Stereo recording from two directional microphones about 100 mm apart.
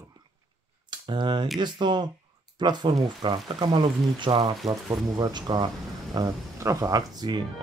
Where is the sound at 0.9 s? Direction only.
50° right (ahead or behind).